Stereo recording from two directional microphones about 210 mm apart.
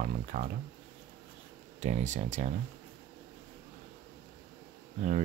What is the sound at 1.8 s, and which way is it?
Speech, 35° right (ahead or behind).